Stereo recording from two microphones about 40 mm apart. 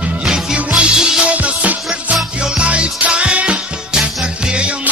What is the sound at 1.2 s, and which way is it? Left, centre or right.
Music, right.